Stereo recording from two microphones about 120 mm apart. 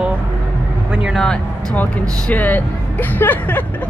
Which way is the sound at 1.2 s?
5° left (ahead or behind).